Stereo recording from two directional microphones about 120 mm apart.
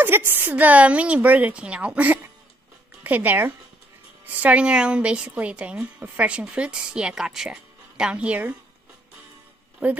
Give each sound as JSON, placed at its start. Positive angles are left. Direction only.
{"t": 0.0, "sound": "a woman's voice", "side_deg": -20}
{"t": 9.8, "sound": "a woman's voice", "side_deg": -10}